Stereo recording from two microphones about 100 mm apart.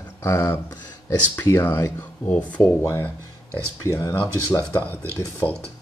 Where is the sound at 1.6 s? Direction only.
35° left (ahead or behind).